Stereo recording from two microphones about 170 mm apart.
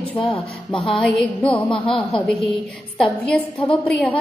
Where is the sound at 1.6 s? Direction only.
30° left (ahead or behind).